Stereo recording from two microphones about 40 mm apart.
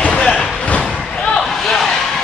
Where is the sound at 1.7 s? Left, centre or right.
Centre.